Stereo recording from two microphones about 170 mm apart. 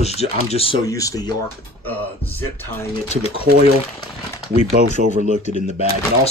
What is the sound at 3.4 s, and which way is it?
Speech, 60° right (ahead or behind).